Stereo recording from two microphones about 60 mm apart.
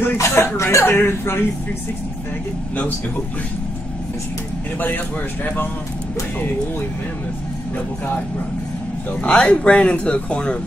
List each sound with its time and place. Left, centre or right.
0.2 s speech: left
0.8 s speech: left
4.7 s speech: left
9.2 s speech: centre